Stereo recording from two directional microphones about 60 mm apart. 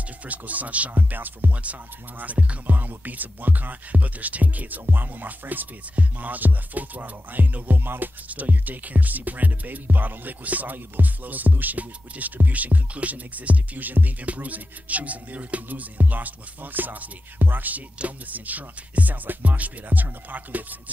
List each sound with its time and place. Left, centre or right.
0.3 s music: right